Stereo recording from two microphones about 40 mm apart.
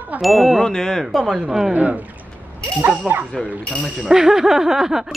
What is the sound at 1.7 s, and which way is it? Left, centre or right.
Speech, right.